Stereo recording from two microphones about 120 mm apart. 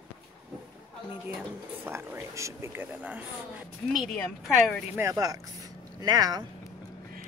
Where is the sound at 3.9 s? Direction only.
Centre (ahead or behind).